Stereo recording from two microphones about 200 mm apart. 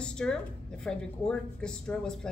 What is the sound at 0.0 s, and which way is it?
Speech, 5° left (ahead or behind).